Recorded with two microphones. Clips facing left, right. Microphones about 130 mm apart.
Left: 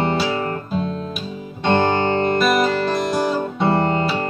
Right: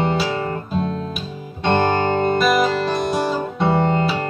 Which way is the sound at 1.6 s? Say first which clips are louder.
Even; centre (ahead or behind).